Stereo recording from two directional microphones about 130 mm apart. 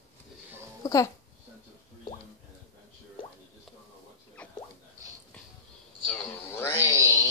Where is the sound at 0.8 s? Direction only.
25° left (ahead or behind).